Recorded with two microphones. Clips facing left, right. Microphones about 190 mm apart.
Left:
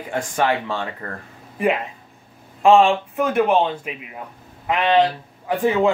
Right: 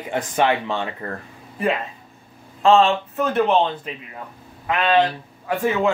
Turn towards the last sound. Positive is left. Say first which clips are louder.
# left 2 dB
turn(degrees=15)  # may be behind; listen again after turning